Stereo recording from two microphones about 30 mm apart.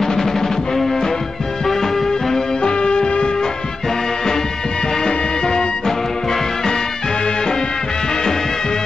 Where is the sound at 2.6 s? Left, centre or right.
Left.